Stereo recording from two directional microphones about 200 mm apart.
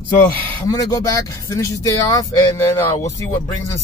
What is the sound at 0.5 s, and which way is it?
Speech, 20° left (ahead or behind).